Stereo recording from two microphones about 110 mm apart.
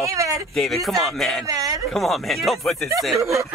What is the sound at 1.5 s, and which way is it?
Speech, 30° right (ahead or behind).